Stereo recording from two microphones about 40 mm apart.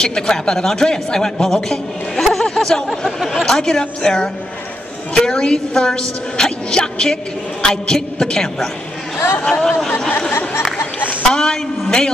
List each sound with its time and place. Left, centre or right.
0.0 s speech: centre
2.1 s a sound: centre
3.1 s speech: centre
3.4 s a woman's voice: centre
11.2 s a woman's voice: centre